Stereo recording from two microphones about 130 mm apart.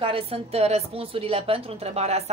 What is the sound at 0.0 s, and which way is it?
A woman's voice, 45° right (ahead or behind).